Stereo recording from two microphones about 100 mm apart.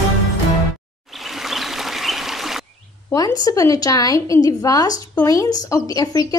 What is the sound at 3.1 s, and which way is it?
Speech, 40° left (ahead or behind).